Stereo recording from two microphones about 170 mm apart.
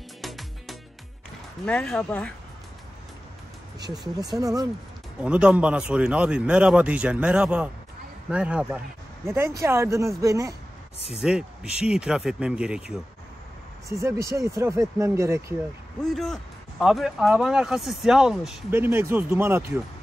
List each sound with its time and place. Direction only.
0.2 s music: centre (ahead or behind)
1.7 s speech: 5° left (ahead or behind)
4.4 s speech: 20° right (ahead or behind)
5.2 s speech: 5° right (ahead or behind)
11.1 s speech: 5° right (ahead or behind)
13.8 s speech: 20° right (ahead or behind)
16.0 s speech: centre (ahead or behind)
18.7 s speech: 15° right (ahead or behind)